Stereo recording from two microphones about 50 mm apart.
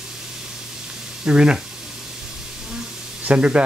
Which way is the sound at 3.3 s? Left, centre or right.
Right.